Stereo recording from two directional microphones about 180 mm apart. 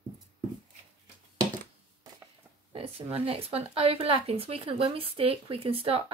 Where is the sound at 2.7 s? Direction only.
30° right (ahead or behind).